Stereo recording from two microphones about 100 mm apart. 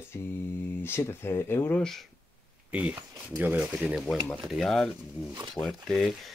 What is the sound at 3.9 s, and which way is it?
Speech, centre (ahead or behind).